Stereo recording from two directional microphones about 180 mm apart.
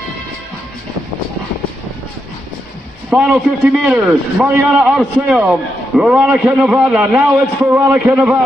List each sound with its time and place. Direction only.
3.1 s a man's voice: 5° right (ahead or behind)